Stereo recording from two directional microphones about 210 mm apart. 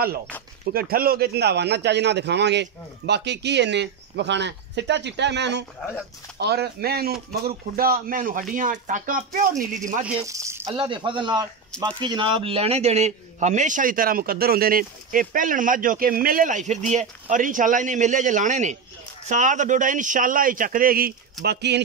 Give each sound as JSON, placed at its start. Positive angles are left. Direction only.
{"t": 0.7, "sound": "a man's voice", "side_deg": -45}
{"t": 10.0, "sound": "speech", "side_deg": -10}
{"t": 10.6, "sound": "a man's voice", "side_deg": -25}